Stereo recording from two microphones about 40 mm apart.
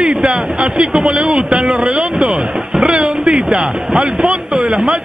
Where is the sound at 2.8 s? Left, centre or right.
Right.